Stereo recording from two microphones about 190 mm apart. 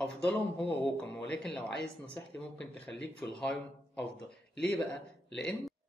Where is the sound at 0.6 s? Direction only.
5° left (ahead or behind).